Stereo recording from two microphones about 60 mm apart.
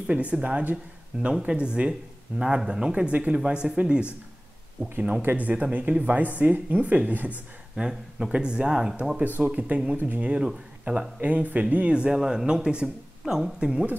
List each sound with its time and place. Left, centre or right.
0.0 s speech: right
1.2 s speech: centre
4.8 s speech: right
7.7 s speech: centre
9.2 s speech: right
11.1 s speech: right